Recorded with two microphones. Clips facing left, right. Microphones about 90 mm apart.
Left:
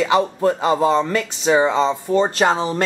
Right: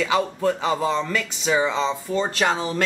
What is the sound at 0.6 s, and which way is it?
Speech, 40° left (ahead or behind).